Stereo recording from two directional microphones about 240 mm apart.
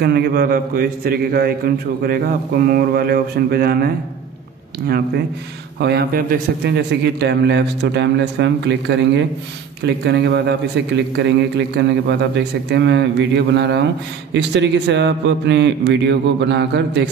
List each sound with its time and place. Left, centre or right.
0.0 s a man's voice: right